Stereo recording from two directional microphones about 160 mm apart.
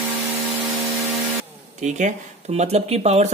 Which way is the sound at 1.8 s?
50° right (ahead or behind).